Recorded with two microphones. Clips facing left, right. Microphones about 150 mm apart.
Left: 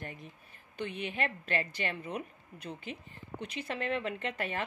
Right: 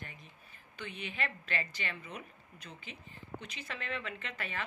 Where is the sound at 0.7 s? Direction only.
50° left (ahead or behind).